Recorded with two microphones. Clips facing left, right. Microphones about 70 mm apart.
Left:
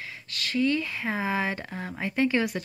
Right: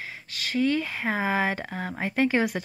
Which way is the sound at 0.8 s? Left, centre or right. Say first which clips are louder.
Right 2 dB; right.